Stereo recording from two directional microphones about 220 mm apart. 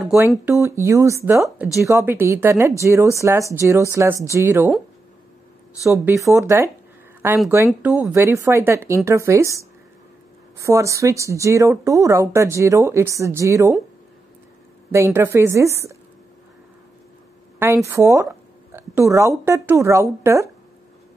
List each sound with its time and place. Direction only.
0.1 s speech: 5° right (ahead or behind)
5.8 s speech: centre (ahead or behind)
6.1 s speech: 15° right (ahead or behind)
14.9 s speech: 10° right (ahead or behind)
17.8 s speech: 15° right (ahead or behind)